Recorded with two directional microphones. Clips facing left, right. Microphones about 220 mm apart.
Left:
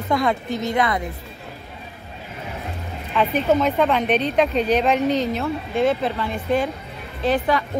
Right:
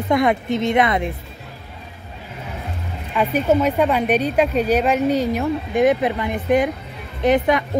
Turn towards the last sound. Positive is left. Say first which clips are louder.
# right 4 dB
turn(degrees=-20)  # may be behind; listen again after turning